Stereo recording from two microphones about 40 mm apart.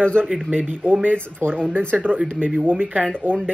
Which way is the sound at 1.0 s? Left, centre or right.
Right.